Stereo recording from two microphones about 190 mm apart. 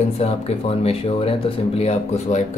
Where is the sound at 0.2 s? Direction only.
30° left (ahead or behind).